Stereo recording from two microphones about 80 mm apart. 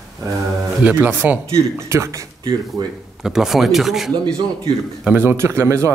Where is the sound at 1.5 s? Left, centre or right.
Right.